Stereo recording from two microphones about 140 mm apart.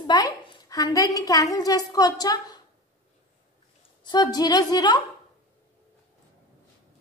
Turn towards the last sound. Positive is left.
turn(degrees=30)  # may be behind; listen again after turning